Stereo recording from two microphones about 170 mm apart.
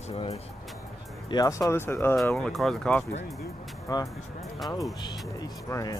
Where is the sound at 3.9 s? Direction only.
20° left (ahead or behind).